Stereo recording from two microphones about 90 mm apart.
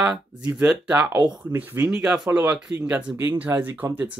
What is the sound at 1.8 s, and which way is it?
Speech, 10° right (ahead or behind).